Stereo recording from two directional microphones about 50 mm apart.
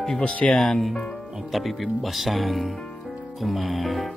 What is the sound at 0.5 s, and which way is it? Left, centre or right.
Speech, centre.